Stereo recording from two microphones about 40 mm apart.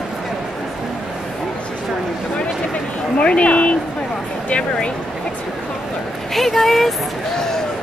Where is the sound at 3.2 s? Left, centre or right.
Left.